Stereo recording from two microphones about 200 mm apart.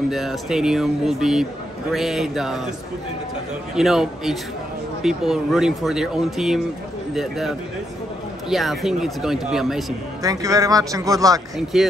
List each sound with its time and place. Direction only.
0.1 s speech: centre (ahead or behind)
3.7 s speech: centre (ahead or behind)
10.2 s a man's voice: 15° right (ahead or behind)
11.5 s speech: centre (ahead or behind)